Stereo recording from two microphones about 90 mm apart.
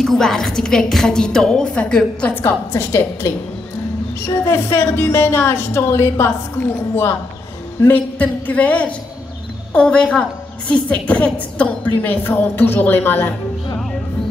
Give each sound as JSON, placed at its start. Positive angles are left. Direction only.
{"t": 0.0, "sound": "a woman's voice", "side_deg": 5}
{"t": 2.4, "sound": "a woman's voice", "side_deg": 25}
{"t": 4.5, "sound": "a woman's voice", "side_deg": 30}